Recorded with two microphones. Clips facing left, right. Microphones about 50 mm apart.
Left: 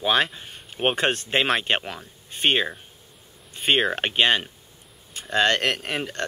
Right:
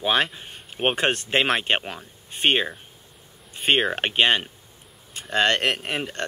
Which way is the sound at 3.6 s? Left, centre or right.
Centre.